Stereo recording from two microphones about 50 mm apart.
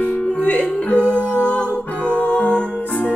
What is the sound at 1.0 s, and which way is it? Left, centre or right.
Music, right.